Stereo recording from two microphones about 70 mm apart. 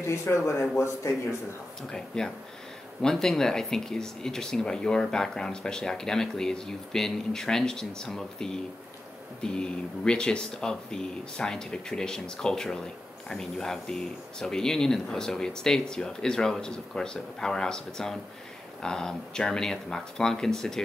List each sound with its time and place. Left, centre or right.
0.0 s speech: left
1.9 s speech: centre